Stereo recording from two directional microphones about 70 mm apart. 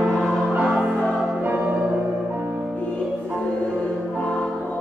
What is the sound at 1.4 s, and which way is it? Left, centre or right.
Music, right.